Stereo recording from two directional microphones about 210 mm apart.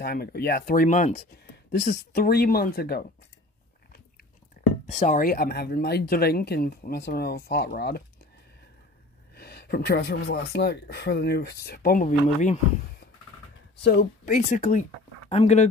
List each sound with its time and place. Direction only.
0.0 s speech: 45° left (ahead or behind)
1.7 s speech: 45° left (ahead or behind)
4.8 s speech: 35° left (ahead or behind)
9.3 s speech: 50° left (ahead or behind)
13.8 s speech: 45° left (ahead or behind)